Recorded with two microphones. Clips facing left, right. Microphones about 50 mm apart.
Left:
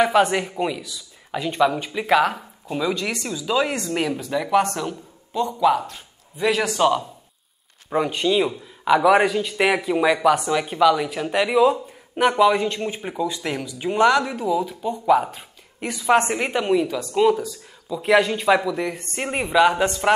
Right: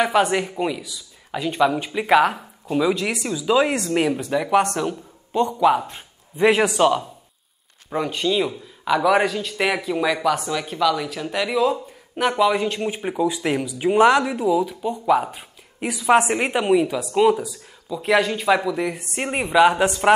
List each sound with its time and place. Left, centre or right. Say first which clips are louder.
0.0 s speech: left 1 dB; centre
5.9 s a man's voice: even; right
6.6 s speech: right 2 dB; centre
7.9 s a man's voice: left 2 dB; centre
12.3 s speech: left 2 dB; centre
12.6 s speech: right 2 dB; centre